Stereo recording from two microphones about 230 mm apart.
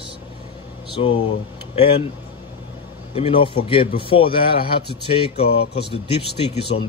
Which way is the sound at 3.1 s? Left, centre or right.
Left.